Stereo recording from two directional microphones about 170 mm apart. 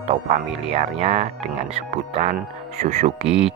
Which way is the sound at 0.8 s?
40° right (ahead or behind).